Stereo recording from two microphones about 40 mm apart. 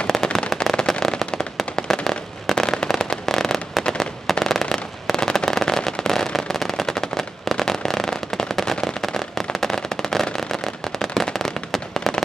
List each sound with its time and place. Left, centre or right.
0.0 s firecracker: centre
1.8 s fireworks: centre